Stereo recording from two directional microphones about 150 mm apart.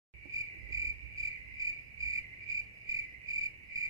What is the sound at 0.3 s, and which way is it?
Cricket, 20° right (ahead or behind).